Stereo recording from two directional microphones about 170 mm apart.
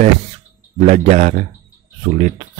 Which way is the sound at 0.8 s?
45° right (ahead or behind).